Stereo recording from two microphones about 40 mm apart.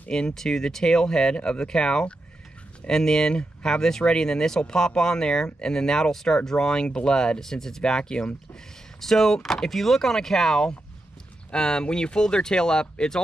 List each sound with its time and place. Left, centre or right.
0.1 s speech: centre
9.0 s speech: centre